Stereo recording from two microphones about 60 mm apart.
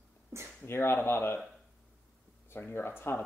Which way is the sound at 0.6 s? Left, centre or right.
Left.